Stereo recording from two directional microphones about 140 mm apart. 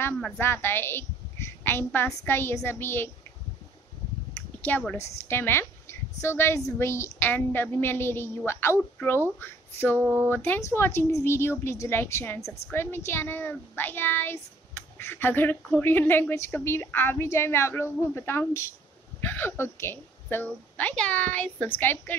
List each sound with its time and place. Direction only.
0.0 s a woman's voice: 15° left (ahead or behind)
4.6 s a woman's voice: 10° left (ahead or behind)
9.9 s a sound: 15° right (ahead or behind)
10.3 s a woman's voice: 15° left (ahead or behind)